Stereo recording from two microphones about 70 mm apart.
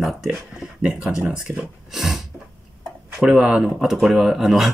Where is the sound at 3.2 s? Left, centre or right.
Centre.